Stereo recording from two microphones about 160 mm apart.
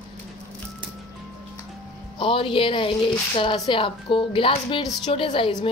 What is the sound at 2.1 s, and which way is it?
A woman's voice, 35° left (ahead or behind).